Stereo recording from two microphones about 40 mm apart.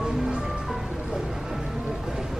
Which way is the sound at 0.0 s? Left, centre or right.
Centre.